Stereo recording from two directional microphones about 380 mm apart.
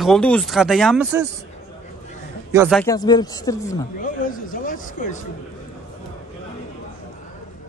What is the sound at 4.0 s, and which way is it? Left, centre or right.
Speech, left.